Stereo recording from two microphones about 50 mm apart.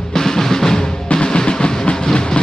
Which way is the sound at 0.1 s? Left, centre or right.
Centre.